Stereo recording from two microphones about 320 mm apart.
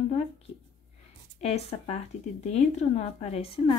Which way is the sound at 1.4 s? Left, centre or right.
Centre.